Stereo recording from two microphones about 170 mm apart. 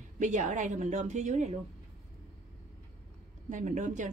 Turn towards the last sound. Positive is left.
turn(degrees=-45)  # may be behind; listen again after turning